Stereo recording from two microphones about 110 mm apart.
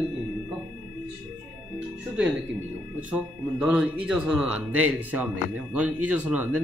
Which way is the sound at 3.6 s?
10° right (ahead or behind).